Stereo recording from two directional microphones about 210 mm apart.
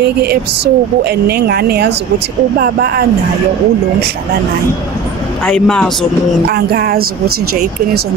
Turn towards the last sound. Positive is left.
turn(degrees=-50)  # may be behind; listen again after turning